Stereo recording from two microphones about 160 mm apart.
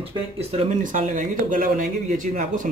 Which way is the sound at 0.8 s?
55° right (ahead or behind).